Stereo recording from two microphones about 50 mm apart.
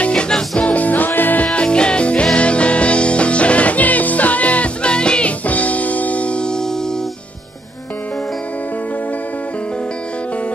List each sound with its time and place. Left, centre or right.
0.0 s music: centre
0.6 s music: left
1.5 s music: left
5.5 s music: left